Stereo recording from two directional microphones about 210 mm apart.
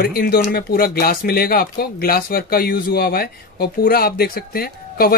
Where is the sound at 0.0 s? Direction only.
45° left (ahead or behind).